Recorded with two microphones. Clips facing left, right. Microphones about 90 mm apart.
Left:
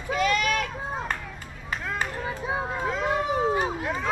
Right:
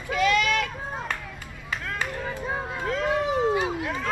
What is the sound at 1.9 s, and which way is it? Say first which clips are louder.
Run: left 1 dB; 10° left (ahead or behind).